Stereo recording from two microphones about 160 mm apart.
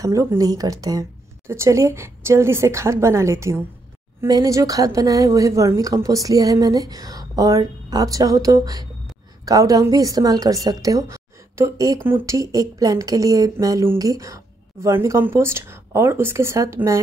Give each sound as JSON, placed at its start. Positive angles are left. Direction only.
{"t": 0.0, "sound": "a woman's voice", "side_deg": -20}